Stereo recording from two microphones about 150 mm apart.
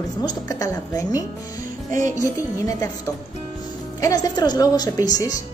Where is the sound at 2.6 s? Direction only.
20° left (ahead or behind).